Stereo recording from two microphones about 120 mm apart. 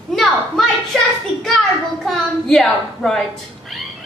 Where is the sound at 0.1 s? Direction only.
Centre (ahead or behind).